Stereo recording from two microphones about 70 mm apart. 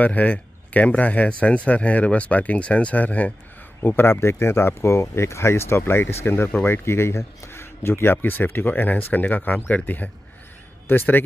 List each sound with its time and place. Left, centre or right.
0.0 s speech: left
3.8 s speech: left